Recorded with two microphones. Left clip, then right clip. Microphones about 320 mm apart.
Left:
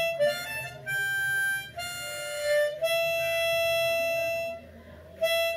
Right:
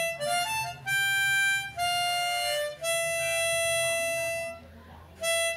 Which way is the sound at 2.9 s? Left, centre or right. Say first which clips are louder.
Right 1 dB; left.